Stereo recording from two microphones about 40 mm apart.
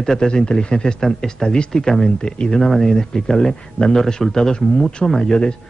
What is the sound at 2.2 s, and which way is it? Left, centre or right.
Speech, left.